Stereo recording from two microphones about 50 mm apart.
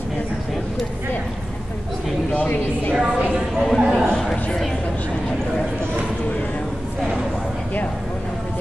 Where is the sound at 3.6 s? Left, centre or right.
Centre.